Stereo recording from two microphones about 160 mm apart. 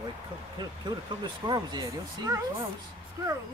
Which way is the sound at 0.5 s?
25° right (ahead or behind).